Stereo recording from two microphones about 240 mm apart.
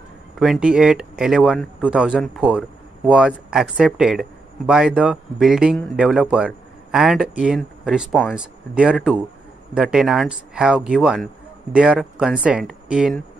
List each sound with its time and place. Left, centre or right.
0.4 s speech: centre